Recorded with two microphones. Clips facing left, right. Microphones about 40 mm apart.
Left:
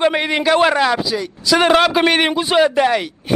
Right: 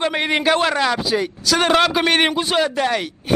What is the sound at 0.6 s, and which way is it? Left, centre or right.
A man's voice, centre.